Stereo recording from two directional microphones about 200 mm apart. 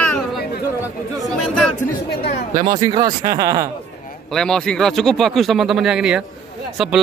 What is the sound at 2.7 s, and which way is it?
Speech, 20° right (ahead or behind).